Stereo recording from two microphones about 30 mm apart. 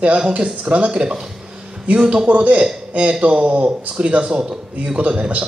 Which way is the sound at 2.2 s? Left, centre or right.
Right.